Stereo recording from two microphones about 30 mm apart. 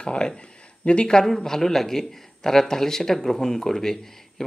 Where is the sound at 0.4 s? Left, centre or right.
Left.